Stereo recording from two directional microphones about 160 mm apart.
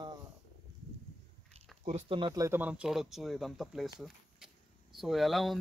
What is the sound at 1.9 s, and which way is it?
Speech, 40° right (ahead or behind).